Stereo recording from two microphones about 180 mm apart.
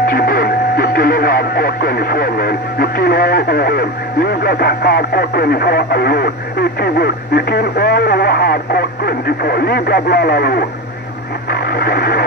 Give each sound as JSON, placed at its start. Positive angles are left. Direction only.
{"t": 0.0, "sound": "radio", "side_deg": 55}
{"t": 6.8, "sound": "speech", "side_deg": 60}
{"t": 11.5, "sound": "radio", "side_deg": 60}